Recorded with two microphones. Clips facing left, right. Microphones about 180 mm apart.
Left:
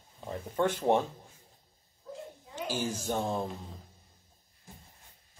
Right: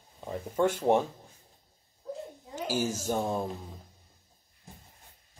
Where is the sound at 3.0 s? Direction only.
10° right (ahead or behind).